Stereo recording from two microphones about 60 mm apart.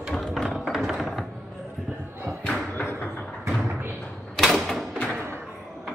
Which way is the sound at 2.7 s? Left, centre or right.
Left.